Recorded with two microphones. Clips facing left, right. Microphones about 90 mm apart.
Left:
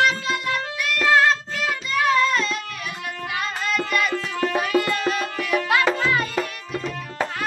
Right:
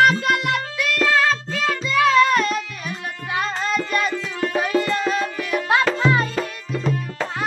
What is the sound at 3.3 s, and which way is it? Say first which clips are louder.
Tabla: right 4 dB; 30° right (ahead or behind).